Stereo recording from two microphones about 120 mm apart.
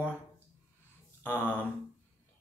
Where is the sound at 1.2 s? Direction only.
15° left (ahead or behind).